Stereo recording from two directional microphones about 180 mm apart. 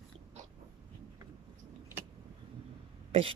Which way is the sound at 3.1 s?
30° right (ahead or behind).